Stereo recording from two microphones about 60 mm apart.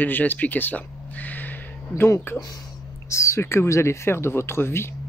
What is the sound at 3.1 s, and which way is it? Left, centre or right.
Speech, left.